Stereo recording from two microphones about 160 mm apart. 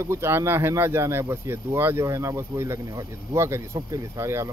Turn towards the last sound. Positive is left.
turn(degrees=-15)  # may be behind; listen again after turning